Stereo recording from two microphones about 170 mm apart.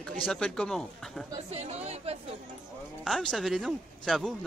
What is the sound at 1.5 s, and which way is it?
Speech, 40° right (ahead or behind).